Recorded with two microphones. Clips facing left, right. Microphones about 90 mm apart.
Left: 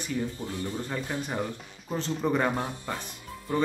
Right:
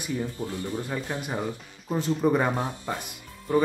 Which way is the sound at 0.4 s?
20° right (ahead or behind).